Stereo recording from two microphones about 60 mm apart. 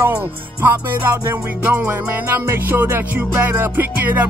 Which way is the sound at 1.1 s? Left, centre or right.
Right.